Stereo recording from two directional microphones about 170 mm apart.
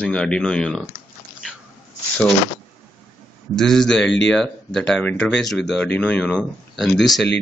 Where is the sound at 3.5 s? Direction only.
5° left (ahead or behind).